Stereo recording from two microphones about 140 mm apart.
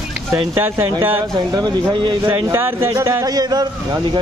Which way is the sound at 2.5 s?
15° right (ahead or behind).